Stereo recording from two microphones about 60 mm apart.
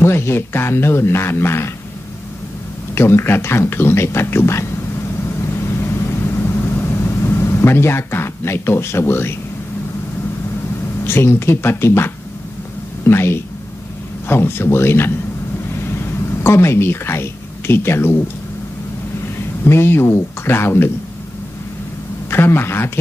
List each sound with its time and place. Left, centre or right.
0.0 s speech: left
2.9 s speech: left
5.5 s vehicle: left
11.1 s a woman's voice: left
19.6 s speech: left
22.3 s speech: left